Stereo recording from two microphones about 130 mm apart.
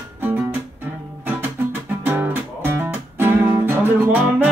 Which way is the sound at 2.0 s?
15° right (ahead or behind).